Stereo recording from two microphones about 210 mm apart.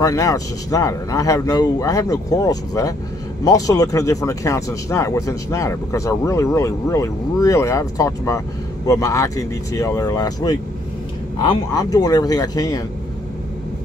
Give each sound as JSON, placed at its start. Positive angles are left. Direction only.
{"t": 0.0, "sound": "speech", "side_deg": 15}